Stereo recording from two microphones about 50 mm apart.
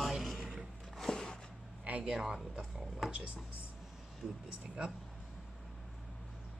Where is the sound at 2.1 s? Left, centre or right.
Centre.